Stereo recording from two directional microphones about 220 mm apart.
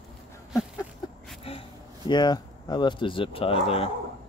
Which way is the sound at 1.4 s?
20° left (ahead or behind).